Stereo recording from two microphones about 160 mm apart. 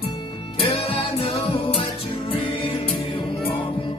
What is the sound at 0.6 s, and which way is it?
Music, 35° left (ahead or behind).